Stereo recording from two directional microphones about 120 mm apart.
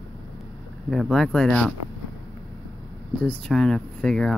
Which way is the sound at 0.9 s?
Centre (ahead or behind).